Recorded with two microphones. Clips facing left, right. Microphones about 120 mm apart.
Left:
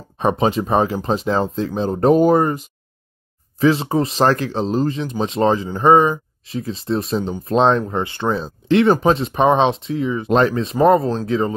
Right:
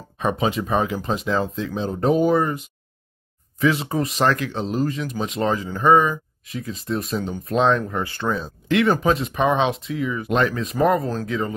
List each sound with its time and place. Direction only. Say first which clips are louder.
0.2 s speech: left 5 dB; 30° left (ahead or behind)